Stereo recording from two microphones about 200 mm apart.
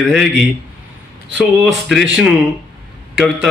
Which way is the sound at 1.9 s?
Centre (ahead or behind).